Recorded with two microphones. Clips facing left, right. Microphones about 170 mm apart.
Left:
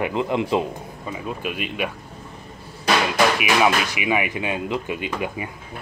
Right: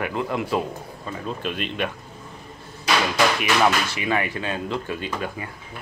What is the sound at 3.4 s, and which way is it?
Speech, 10° left (ahead or behind).